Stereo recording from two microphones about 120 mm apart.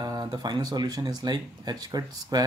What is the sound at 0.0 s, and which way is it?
Speech, 35° right (ahead or behind).